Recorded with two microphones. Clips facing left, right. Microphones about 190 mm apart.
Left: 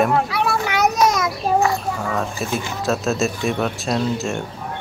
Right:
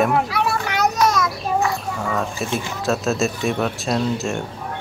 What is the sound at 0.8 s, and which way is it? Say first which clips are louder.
Children playing: left 1 dB; 20° left (ahead or behind).